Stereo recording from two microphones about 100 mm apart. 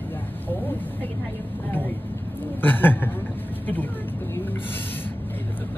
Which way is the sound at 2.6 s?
20° left (ahead or behind).